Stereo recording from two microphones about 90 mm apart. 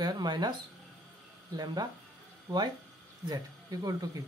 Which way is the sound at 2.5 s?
55° right (ahead or behind).